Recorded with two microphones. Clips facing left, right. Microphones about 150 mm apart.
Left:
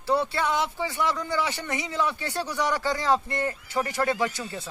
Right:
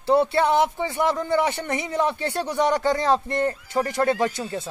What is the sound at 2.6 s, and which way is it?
Speech, 25° right (ahead or behind).